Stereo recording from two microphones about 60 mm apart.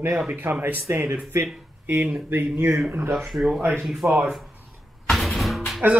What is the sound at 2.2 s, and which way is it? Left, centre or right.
Speech, right.